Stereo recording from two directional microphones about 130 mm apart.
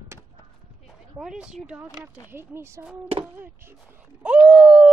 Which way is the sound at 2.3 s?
20° right (ahead or behind).